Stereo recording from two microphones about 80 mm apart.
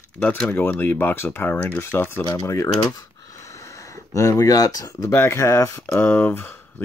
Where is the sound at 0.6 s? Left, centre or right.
Left.